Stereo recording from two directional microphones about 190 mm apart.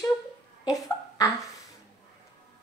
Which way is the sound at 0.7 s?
20° left (ahead or behind).